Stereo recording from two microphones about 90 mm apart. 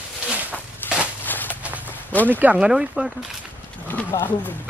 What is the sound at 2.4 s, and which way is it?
Speech, 15° right (ahead or behind).